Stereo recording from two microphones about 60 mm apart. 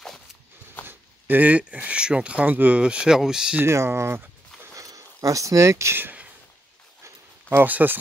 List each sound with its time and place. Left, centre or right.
0.8 s speech: right
2.8 s speech: centre
3.6 s speech: right
4.7 s speech: right
7.4 s speech: right